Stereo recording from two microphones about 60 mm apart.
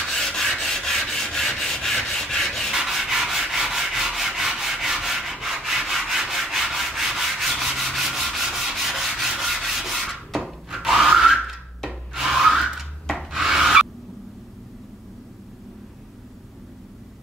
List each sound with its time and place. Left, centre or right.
0.1 s rub: centre
2.7 s rub: centre
11.4 s wood: centre
13.2 s rub: centre